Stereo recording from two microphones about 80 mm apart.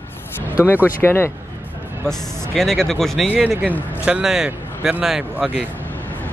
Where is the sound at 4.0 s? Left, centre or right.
Centre.